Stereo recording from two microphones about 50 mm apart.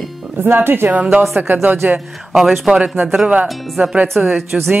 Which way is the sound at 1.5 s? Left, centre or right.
Right.